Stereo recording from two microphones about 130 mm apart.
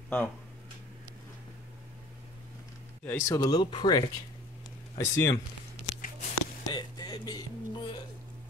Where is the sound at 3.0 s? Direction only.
20° left (ahead or behind).